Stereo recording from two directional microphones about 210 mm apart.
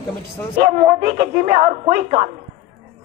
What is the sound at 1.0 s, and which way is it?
A woman's voice, 45° right (ahead or behind).